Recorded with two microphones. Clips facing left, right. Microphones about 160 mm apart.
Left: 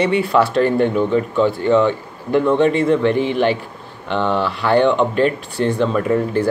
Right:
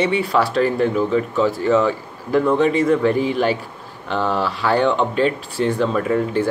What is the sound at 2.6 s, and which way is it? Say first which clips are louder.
Speech: left 1 dB; 35° left (ahead or behind).